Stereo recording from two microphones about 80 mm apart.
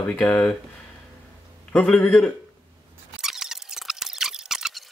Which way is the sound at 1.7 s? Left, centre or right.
Centre.